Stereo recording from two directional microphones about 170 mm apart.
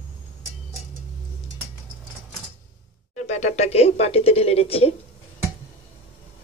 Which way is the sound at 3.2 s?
40° left (ahead or behind).